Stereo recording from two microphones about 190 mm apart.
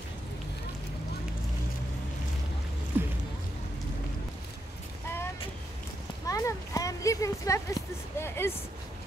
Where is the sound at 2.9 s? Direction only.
10° right (ahead or behind).